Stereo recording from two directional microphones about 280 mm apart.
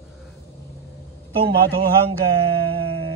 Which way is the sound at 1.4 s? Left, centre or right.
Right.